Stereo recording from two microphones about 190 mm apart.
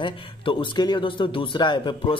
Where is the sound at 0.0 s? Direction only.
25° left (ahead or behind).